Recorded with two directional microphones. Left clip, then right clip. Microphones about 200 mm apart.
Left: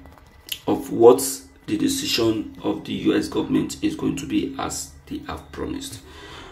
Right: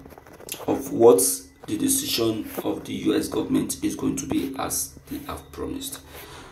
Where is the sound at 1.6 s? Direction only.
15° left (ahead or behind).